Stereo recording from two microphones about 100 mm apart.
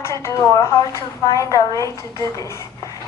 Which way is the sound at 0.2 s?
30° left (ahead or behind).